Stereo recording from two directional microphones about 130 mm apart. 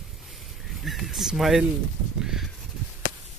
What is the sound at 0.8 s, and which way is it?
Speech, centre (ahead or behind).